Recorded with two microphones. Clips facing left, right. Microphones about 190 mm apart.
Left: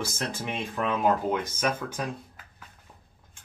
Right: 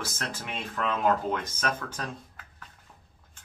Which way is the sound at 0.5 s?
15° left (ahead or behind).